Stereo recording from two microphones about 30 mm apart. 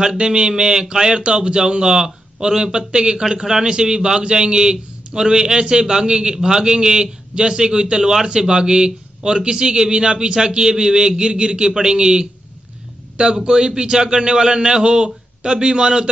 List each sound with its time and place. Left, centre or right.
0.2 s a man's voice: right